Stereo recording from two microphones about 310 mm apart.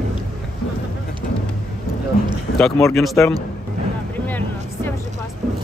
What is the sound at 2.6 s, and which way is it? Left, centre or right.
Speech, centre.